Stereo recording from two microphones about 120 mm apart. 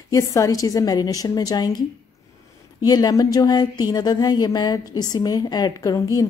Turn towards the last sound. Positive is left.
turn(degrees=30)  # may be behind; listen again after turning